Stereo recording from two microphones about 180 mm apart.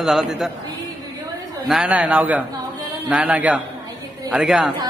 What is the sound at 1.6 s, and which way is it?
A man's voice, 5° right (ahead or behind).